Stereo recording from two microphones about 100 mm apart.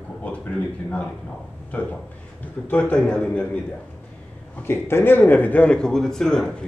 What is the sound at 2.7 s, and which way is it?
Speech, 15° left (ahead or behind).